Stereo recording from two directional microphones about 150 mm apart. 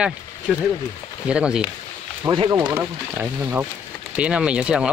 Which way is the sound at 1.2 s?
5° right (ahead or behind).